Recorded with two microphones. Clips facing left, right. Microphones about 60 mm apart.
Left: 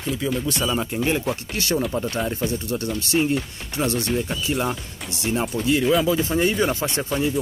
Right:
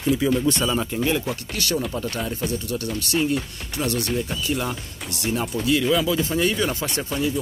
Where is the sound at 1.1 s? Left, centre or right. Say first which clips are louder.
Left 1 dB; left.